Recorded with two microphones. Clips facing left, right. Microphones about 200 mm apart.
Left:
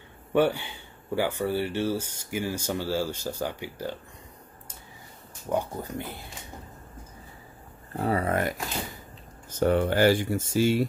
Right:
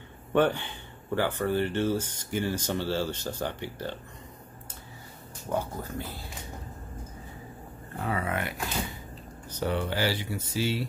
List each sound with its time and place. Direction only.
0.3 s speech: 10° left (ahead or behind)
5.5 s speech: 15° left (ahead or behind)
7.9 s speech: 35° left (ahead or behind)